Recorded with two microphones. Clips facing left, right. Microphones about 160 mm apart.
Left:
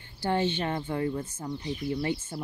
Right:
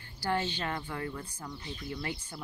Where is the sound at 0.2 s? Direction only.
25° left (ahead or behind).